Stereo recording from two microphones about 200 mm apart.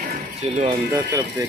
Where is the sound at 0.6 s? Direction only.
20° right (ahead or behind).